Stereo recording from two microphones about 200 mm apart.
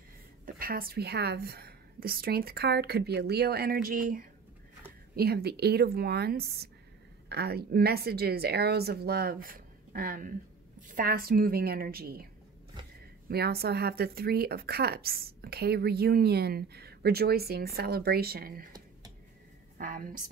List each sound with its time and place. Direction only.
0.6 s a woman's voice: 45° right (ahead or behind)
13.3 s a woman's voice: 50° right (ahead or behind)
19.8 s a woman's voice: 45° right (ahead or behind)